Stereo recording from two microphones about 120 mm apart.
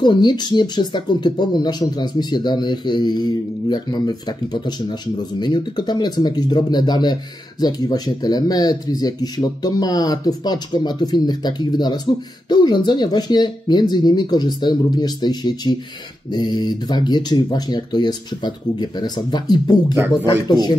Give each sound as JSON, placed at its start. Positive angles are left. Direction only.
{"t": 0.0, "sound": "speech", "side_deg": 40}